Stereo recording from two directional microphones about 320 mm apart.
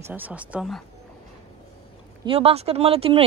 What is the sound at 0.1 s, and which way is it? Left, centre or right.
Speech, centre.